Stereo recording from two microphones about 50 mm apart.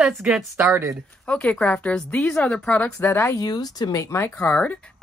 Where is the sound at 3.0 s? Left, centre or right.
Left.